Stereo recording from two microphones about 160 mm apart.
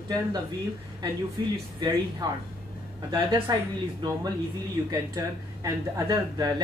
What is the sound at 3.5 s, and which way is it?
Speech, 25° right (ahead or behind).